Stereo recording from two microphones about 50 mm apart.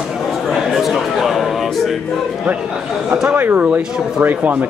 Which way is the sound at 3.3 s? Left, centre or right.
Right.